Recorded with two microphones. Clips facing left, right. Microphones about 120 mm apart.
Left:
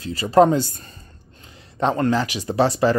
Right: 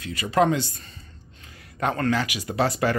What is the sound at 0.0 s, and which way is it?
Speech, 35° left (ahead or behind).